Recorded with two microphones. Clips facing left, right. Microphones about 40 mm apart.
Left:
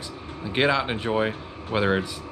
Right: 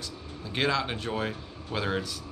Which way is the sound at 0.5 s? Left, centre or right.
Left.